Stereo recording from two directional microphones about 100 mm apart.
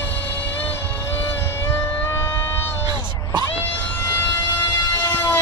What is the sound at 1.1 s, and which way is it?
Music, 20° left (ahead or behind).